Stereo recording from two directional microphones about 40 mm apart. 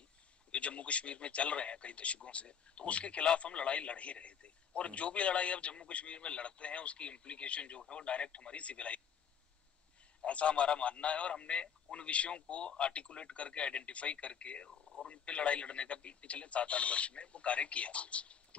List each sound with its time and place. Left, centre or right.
0.5 s a man's voice: left
10.2 s a man's voice: left
14.7 s a sound: centre
15.0 s speech: left